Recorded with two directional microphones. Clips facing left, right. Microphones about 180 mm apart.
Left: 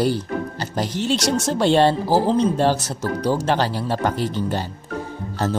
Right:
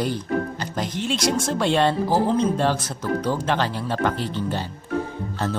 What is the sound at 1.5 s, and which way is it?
Speech, 30° left (ahead or behind).